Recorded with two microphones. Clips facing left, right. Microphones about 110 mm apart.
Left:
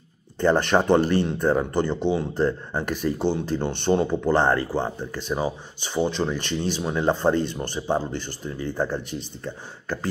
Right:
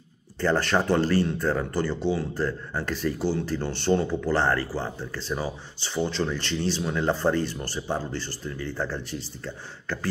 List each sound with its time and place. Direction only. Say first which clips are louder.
0.4 s speech: left 4 dB; 20° left (ahead or behind)